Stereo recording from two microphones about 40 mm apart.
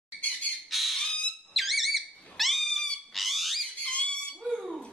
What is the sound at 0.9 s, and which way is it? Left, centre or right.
Whistle, centre.